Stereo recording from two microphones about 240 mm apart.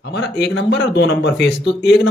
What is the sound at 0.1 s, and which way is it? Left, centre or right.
A man's voice, left.